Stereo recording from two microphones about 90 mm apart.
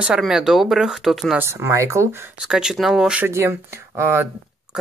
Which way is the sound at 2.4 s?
5° right (ahead or behind).